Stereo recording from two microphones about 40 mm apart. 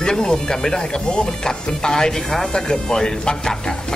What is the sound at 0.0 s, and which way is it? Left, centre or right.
A woman's voice, centre.